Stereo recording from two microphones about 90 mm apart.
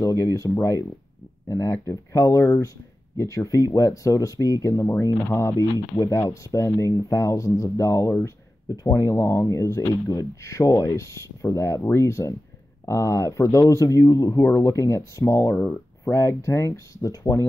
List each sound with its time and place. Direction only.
0.0 s speech: 35° left (ahead or behind)